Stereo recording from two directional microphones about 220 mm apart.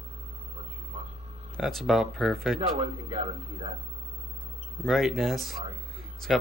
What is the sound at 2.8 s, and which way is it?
Speech, 25° right (ahead or behind).